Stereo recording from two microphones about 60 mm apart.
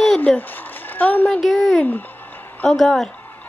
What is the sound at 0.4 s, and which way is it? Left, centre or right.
Speech, left.